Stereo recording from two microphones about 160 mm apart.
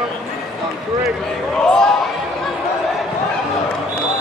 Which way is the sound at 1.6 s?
5° left (ahead or behind).